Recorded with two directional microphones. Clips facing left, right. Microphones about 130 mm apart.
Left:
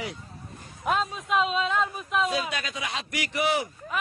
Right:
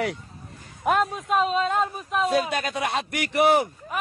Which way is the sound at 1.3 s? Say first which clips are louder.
Right 2 dB; 45° right (ahead or behind).